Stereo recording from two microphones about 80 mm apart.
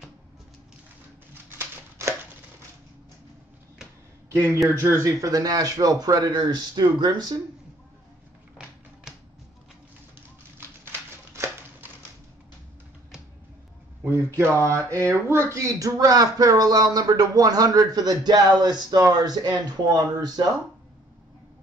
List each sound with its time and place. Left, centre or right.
5.0 s speech: right
8.6 s tap: centre
10.9 s a sound: right
14.0 s a man's voice: right